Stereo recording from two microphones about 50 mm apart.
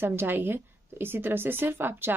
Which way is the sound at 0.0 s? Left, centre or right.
Right.